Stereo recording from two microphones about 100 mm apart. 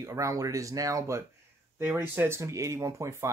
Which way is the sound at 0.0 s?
30° right (ahead or behind).